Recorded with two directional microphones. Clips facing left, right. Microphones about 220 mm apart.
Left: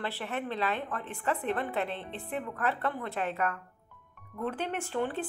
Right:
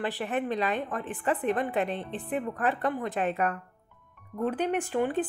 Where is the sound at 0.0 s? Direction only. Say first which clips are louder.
Right 5 dB; 15° right (ahead or behind).